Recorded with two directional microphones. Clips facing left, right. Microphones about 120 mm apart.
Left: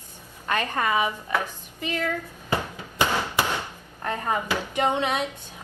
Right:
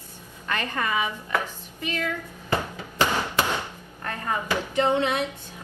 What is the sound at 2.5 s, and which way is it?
Hammer, 15° left (ahead or behind).